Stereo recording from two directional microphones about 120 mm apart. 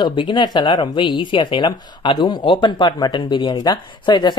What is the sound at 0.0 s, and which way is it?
Speech, 40° left (ahead or behind).